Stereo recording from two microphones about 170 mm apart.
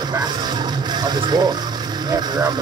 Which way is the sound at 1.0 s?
25° right (ahead or behind).